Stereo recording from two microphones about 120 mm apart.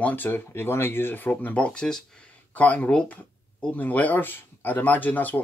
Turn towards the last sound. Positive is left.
turn(degrees=15)  # may be behind; listen again after turning